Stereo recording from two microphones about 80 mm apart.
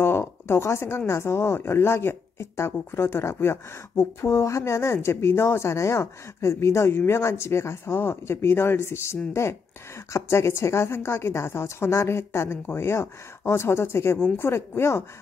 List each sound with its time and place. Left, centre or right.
0.0 s speech: left